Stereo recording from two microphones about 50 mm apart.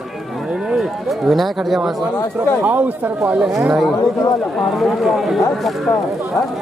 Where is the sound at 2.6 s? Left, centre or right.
Right.